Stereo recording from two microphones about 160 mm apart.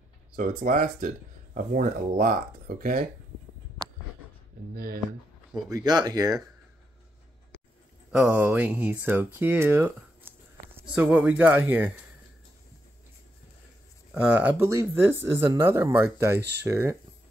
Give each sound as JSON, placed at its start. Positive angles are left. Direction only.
{"t": 0.6, "sound": "speech", "side_deg": -55}
{"t": 4.7, "sound": "speech", "side_deg": -70}
{"t": 5.5, "sound": "speech", "side_deg": -25}
{"t": 8.1, "sound": "speech", "side_deg": -10}
{"t": 14.1, "sound": "speech", "side_deg": -10}
{"t": 16.3, "sound": "speech", "side_deg": -90}
{"t": 16.6, "sound": "speech", "side_deg": -15}